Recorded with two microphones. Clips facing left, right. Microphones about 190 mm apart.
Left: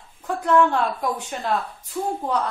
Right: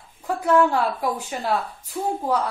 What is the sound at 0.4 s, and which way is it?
A woman's voice, 5° right (ahead or behind).